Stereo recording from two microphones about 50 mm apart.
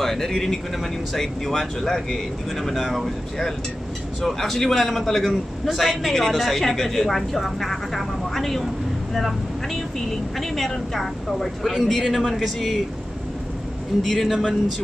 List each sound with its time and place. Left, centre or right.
0.0 s a man's voice: centre
14.0 s a man's voice: centre